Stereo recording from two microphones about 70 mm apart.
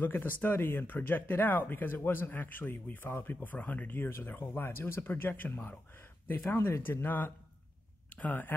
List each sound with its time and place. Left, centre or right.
0.0 s speech: left